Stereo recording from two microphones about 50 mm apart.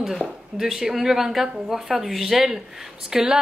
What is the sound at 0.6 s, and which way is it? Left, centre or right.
A woman's voice, centre.